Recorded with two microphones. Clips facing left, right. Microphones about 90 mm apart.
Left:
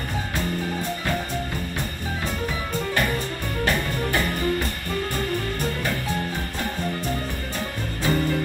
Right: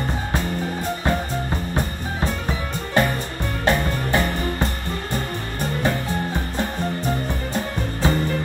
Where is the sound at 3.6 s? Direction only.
25° right (ahead or behind).